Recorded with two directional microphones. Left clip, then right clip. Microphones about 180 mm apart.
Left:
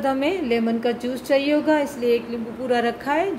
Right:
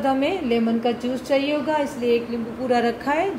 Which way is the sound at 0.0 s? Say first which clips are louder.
Even; 25° left (ahead or behind).